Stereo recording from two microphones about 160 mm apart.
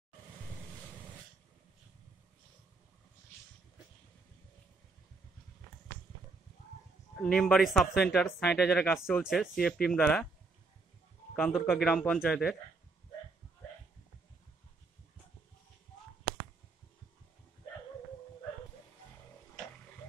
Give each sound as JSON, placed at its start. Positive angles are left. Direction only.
{"t": 7.2, "sound": "speech", "side_deg": 5}
{"t": 11.3, "sound": "speech", "side_deg": 5}